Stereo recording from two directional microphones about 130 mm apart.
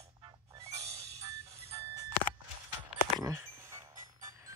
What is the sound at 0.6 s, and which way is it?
Music, 25° right (ahead or behind).